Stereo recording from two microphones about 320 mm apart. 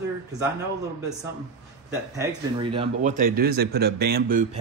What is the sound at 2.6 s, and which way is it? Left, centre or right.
Speech, centre.